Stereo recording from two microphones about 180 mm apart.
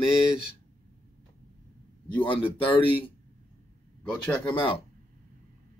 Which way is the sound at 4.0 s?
5° left (ahead or behind).